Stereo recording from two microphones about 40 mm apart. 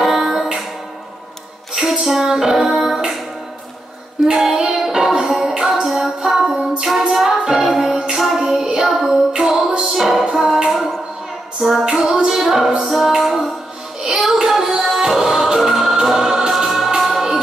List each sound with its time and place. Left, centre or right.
0.0 s music: centre
1.7 s music: centre
4.4 s music: centre
8.4 s child singing: centre
8.8 s music: centre
11.8 s music: centre